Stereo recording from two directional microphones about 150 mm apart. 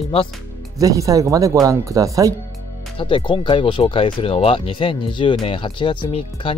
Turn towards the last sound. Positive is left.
turn(degrees=35)  # may be behind; listen again after turning